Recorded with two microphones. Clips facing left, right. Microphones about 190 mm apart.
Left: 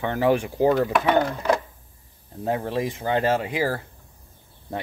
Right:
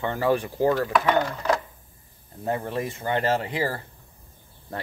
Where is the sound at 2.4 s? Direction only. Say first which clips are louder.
Left 2 dB; 15° left (ahead or behind).